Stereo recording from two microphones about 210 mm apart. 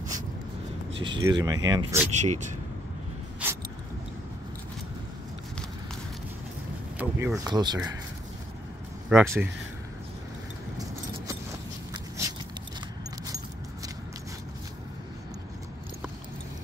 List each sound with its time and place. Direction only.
0.9 s speech: 25° right (ahead or behind)
2.0 s speech: 35° right (ahead or behind)
7.0 s speech: 10° right (ahead or behind)
9.1 s speech: 10° right (ahead or behind)
11.9 s a sound: 20° right (ahead or behind)